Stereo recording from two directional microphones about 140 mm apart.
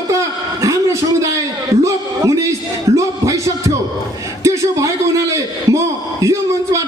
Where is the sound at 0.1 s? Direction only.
20° right (ahead or behind).